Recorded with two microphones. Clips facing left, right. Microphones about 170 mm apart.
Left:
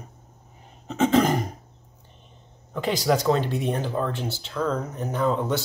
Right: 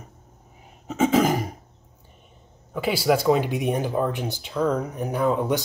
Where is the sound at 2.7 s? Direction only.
5° right (ahead or behind).